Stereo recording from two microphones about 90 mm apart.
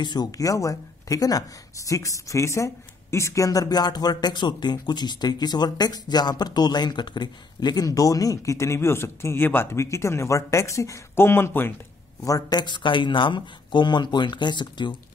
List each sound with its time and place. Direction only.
0.0 s a woman's voice: 50° left (ahead or behind); by 11.7 s 25° left (ahead or behind)
12.2 s speech: 40° left (ahead or behind); by 15.0 s 60° left (ahead or behind)